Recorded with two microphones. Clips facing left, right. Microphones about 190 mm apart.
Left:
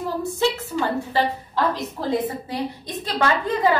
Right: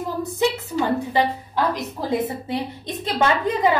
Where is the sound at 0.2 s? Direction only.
15° right (ahead or behind).